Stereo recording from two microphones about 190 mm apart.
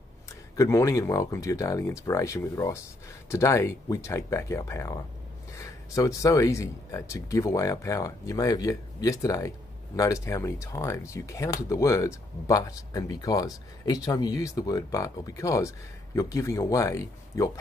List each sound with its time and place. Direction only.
0.6 s speech: 15° left (ahead or behind)